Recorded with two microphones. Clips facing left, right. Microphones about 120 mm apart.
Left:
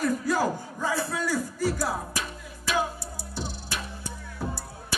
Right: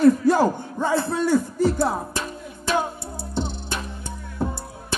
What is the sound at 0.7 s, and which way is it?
Music, 25° right (ahead or behind).